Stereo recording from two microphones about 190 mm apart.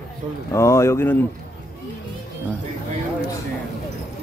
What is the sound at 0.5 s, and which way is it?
Speech, 15° left (ahead or behind).